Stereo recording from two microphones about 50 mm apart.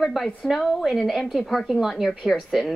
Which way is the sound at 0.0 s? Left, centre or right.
Centre.